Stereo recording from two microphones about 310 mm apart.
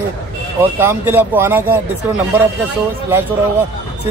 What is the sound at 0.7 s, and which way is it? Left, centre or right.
Speech, centre.